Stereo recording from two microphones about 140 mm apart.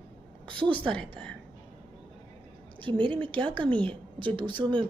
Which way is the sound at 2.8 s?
35° right (ahead or behind).